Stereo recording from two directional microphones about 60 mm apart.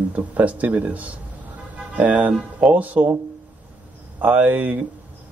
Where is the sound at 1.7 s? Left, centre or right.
Right.